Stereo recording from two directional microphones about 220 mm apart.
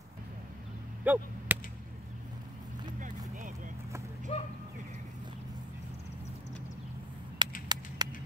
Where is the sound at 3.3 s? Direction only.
35° right (ahead or behind).